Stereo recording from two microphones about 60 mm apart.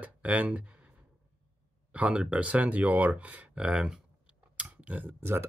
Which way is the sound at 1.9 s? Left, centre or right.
Centre.